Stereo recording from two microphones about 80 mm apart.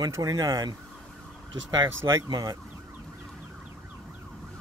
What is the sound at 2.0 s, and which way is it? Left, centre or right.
Speech, right.